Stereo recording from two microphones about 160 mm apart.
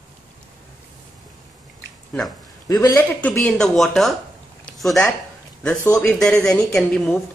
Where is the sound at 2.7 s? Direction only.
20° left (ahead or behind).